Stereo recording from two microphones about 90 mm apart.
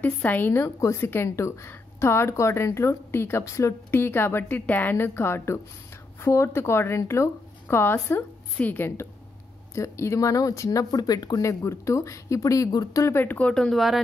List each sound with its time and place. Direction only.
0.0 s a woman's voice: 20° left (ahead or behind); by 11.5 s 45° left (ahead or behind)
11.6 s speech: 35° left (ahead or behind)
13.1 s speech: 20° left (ahead or behind); by 14.0 s centre (ahead or behind)